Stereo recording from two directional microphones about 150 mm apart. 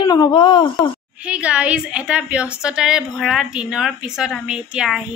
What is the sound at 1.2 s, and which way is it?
A woman's voice, 10° right (ahead or behind).